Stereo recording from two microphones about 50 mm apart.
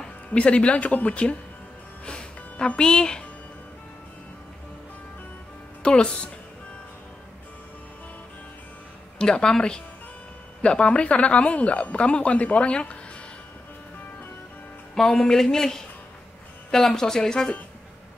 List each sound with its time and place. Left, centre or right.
0.0 s speech: left
2.0 s music: centre
5.8 s speech: centre
9.2 s a woman's voice: centre
15.1 s speech: centre